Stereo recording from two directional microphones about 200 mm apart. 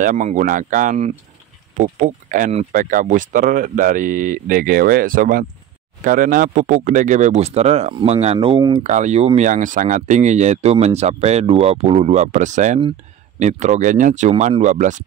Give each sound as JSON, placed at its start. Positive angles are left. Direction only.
{"t": 0.0, "sound": "speech", "side_deg": -40}
{"t": 8.8, "sound": "speech", "side_deg": -35}